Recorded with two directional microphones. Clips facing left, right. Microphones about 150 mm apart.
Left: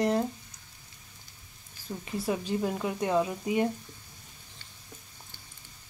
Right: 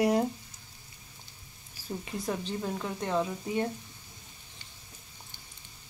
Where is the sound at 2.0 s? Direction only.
5° left (ahead or behind).